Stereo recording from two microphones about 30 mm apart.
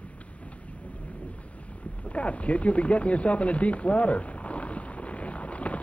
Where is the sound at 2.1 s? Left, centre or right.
Left.